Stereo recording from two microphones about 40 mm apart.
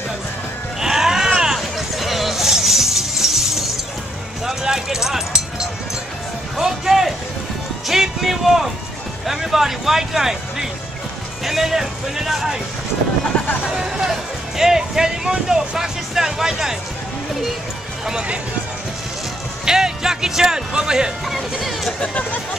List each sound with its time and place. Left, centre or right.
0.7 s a sound: centre
1.6 s music: centre
4.5 s a sound: centre
6.6 s music: centre
7.9 s a sound: centre
9.3 s speech: centre
13.7 s speech: centre
19.6 s music: centre
22.0 s speech: left